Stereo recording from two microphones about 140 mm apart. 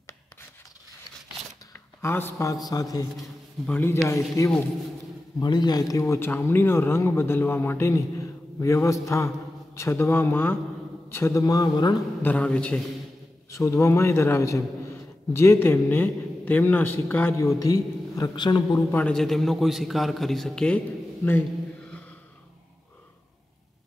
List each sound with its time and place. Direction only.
1.7 s a sound: 20° left (ahead or behind)
2.7 s speech: 25° left (ahead or behind)
3.2 s a man's voice: 10° left (ahead or behind); by 11.9 s 30° left (ahead or behind)
12.2 s a man's voice: 10° left (ahead or behind)
13.5 s speech: 20° left (ahead or behind)
18.9 s a man's voice: 10° left (ahead or behind)